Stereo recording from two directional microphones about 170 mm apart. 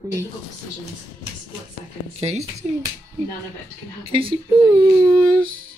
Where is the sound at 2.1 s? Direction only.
35° right (ahead or behind).